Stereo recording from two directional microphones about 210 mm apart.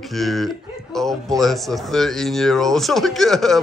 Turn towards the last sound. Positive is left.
turn(degrees=0)  # may be behind; listen again after turning